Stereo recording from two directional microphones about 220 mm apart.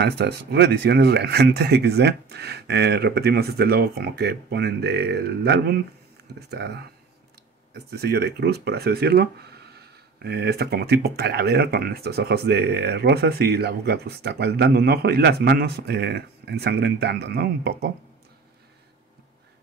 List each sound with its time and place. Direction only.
0.0 s speech: 45° right (ahead or behind)